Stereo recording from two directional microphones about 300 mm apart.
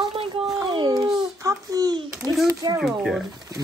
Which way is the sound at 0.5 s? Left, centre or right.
Centre.